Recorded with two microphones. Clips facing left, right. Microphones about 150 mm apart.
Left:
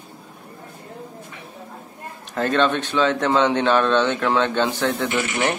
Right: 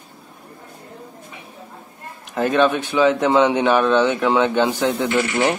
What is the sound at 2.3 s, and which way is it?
Speech, 10° right (ahead or behind).